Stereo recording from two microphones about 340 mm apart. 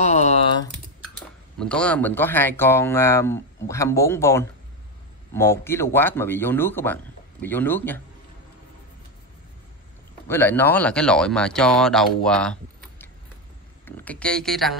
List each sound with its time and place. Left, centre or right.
0.0 s typing: centre
1.6 s speech: centre
10.2 s speech: centre
13.8 s speech: centre